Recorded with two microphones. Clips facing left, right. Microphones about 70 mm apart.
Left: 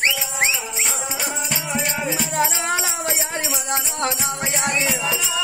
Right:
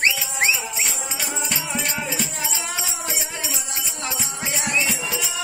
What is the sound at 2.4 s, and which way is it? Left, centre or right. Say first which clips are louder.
Music: left 8 dB; left.